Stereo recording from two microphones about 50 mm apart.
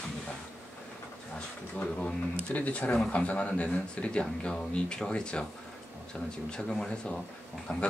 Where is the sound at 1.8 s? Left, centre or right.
Left.